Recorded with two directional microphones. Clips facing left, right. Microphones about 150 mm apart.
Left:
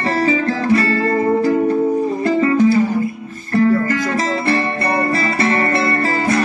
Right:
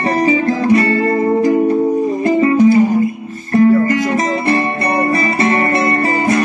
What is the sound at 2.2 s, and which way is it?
Music, 20° right (ahead or behind).